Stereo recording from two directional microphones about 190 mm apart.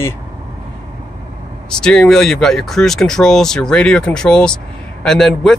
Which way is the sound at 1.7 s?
5° left (ahead or behind).